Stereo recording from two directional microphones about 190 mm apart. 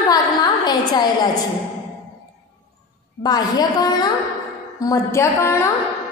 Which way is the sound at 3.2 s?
20° left (ahead or behind).